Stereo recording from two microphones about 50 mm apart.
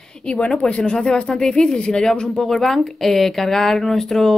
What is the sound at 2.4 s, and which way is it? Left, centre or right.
A woman's voice, centre.